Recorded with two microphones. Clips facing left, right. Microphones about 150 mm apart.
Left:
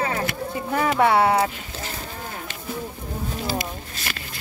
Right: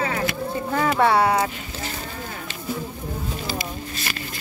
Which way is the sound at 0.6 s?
15° left (ahead or behind).